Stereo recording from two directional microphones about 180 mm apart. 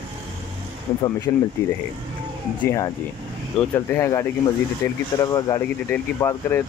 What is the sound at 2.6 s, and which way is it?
Speech, 15° left (ahead or behind).